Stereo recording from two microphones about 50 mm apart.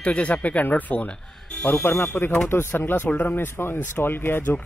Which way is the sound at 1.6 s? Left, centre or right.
Left.